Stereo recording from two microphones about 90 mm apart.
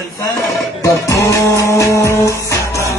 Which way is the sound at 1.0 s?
35° left (ahead or behind).